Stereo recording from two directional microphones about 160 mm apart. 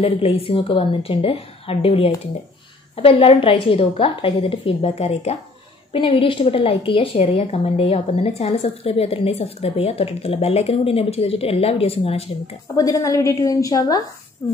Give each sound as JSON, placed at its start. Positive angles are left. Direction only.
{"t": 0.0, "sound": "a woman's voice", "side_deg": 35}
{"t": 12.7, "sound": "a woman's voice", "side_deg": 20}